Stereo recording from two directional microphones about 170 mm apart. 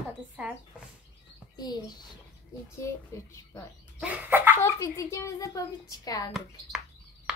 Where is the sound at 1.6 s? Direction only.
25° left (ahead or behind).